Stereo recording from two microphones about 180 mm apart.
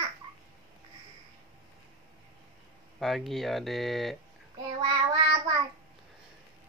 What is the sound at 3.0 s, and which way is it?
Speech, centre (ahead or behind).